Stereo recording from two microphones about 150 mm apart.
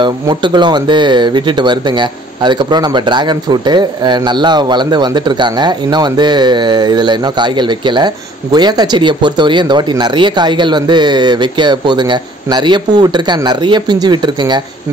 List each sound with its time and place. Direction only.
0.0 s speech: 30° right (ahead or behind)